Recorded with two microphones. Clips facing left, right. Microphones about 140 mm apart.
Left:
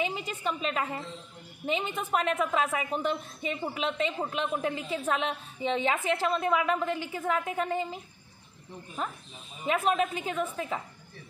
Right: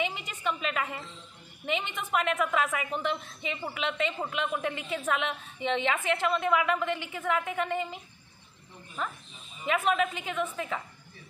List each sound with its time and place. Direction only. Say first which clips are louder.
0.0 s a woman's voice: left 1 dB; 35° left (ahead or behind)
9.6 s a woman's voice: even; 35° left (ahead or behind)